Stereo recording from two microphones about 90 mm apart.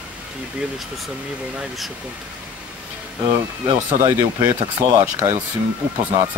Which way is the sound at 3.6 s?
55° right (ahead or behind).